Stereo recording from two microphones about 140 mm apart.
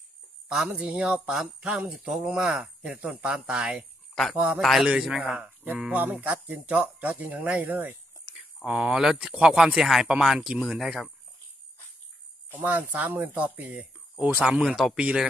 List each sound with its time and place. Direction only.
0.5 s speech: 5° right (ahead or behind)
12.5 s speech: 10° right (ahead or behind)